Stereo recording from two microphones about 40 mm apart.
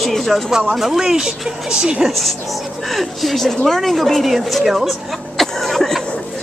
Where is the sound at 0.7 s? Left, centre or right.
Centre.